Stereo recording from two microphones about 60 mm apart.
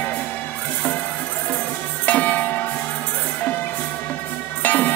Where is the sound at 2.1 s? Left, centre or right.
Left.